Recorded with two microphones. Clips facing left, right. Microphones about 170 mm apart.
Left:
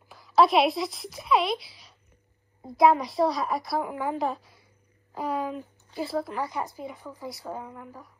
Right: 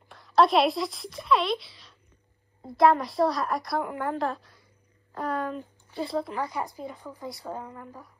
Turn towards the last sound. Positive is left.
turn(degrees=10)  # may be behind; listen again after turning